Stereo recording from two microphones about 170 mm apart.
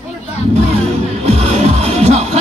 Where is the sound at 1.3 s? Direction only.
35° right (ahead or behind).